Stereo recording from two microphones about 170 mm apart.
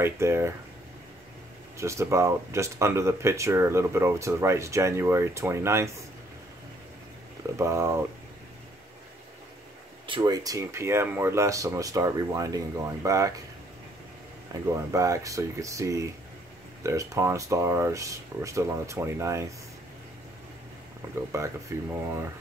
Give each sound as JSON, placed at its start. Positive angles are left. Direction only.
{"t": 0.0, "sound": "speech", "side_deg": -15}
{"t": 1.8, "sound": "speech", "side_deg": -15}
{"t": 7.5, "sound": "speech", "side_deg": -15}
{"t": 10.0, "sound": "speech", "side_deg": -25}
{"t": 14.5, "sound": "speech", "side_deg": -20}
{"t": 21.1, "sound": "speech", "side_deg": -15}